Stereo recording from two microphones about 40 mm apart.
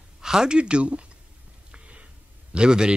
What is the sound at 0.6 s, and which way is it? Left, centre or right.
Speech, right.